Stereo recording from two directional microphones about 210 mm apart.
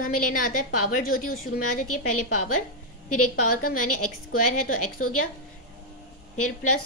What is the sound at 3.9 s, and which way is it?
Speech, 90° left.